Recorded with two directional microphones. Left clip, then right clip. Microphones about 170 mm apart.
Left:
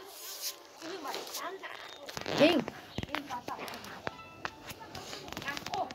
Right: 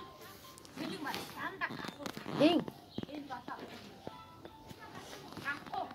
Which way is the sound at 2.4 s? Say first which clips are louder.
Left 3 dB; 10° left (ahead or behind).